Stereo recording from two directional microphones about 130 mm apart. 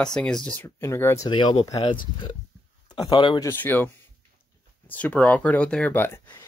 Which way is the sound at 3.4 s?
20° left (ahead or behind).